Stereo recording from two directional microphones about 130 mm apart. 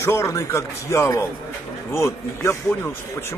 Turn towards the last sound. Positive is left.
turn(degrees=20)  # may be behind; listen again after turning